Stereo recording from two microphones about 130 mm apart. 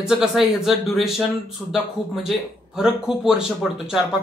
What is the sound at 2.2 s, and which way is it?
Speech, 5° right (ahead or behind).